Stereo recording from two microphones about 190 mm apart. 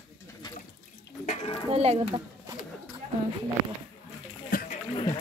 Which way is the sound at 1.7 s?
30° right (ahead or behind).